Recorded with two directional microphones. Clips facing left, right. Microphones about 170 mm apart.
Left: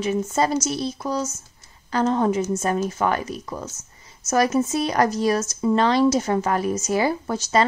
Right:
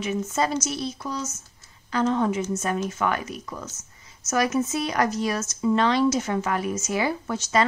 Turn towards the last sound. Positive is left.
turn(degrees=35)  # may be behind; listen again after turning